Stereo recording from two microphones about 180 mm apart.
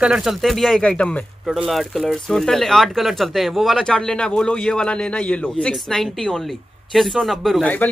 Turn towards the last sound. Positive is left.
turn(degrees=5)  # may be behind; listen again after turning